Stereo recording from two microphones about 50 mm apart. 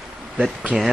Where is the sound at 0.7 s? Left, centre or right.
Centre.